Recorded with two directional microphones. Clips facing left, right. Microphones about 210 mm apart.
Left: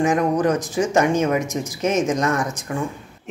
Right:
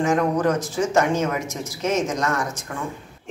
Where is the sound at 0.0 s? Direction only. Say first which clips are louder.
Left 2 dB; 15° left (ahead or behind).